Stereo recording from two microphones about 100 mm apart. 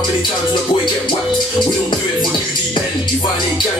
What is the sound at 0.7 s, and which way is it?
Speech, 50° left (ahead or behind).